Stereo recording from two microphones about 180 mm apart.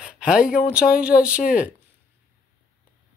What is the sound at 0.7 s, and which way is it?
Speech, 5° right (ahead or behind).